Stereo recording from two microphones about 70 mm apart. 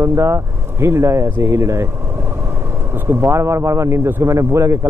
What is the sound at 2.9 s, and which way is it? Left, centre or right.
Speech, right.